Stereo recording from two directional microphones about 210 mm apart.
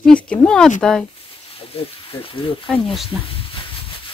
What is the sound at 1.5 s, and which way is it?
Speech, 25° left (ahead or behind).